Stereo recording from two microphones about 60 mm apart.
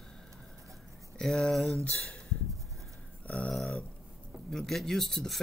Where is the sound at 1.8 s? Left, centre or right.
Left.